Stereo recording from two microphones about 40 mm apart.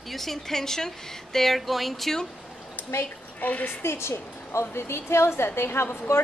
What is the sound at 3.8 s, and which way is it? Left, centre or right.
A woman's voice, left.